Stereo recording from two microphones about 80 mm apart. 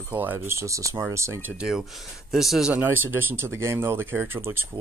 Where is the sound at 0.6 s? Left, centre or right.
Right.